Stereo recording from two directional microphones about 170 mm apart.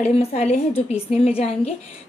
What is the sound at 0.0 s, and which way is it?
A woman's voice, 40° left (ahead or behind).